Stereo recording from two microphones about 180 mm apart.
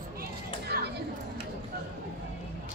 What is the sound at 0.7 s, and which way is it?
Children playing, 55° right (ahead or behind).